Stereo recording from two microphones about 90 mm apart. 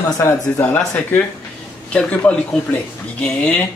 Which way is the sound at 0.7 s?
20° left (ahead or behind).